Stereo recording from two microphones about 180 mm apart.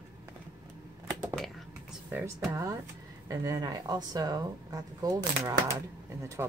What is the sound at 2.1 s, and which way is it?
Speech, 10° right (ahead or behind).